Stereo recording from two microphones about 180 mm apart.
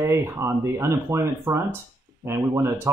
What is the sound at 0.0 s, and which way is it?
Speech, 15° right (ahead or behind).